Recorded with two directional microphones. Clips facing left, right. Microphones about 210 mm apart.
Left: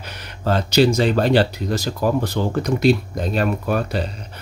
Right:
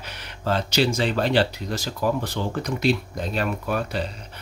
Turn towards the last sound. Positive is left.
turn(degrees=40)  # may be behind; listen again after turning